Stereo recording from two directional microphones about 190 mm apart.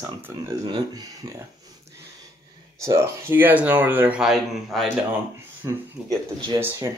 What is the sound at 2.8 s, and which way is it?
Speech, 15° right (ahead or behind).